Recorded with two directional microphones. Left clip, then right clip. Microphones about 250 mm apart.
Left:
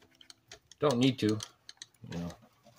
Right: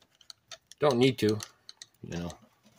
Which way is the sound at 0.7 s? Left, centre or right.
Right.